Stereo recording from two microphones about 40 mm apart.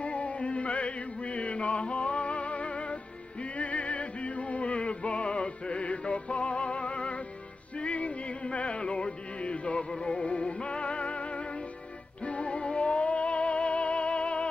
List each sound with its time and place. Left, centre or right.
0.0 s music: left